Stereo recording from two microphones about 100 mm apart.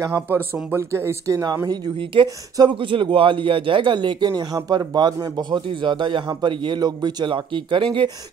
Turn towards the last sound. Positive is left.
turn(degrees=-55)  # may be behind; listen again after turning